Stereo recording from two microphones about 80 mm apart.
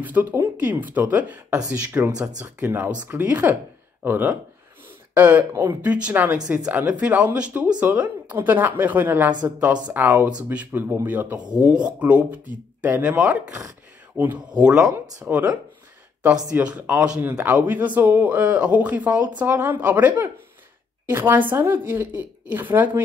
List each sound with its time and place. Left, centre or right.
0.0 s speech: right
14.1 s speech: right
14.5 s speech: centre